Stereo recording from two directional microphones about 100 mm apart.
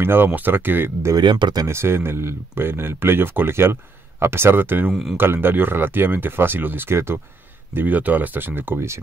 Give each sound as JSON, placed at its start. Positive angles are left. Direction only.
{"t": 0.0, "sound": "speech", "side_deg": -20}
{"t": 1.1, "sound": "speech", "side_deg": -50}
{"t": 1.7, "sound": "speech", "side_deg": -25}